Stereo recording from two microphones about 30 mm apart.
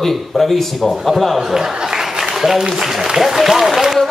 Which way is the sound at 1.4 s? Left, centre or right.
Centre.